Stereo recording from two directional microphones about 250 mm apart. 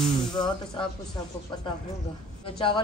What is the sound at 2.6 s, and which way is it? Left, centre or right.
Speech, centre.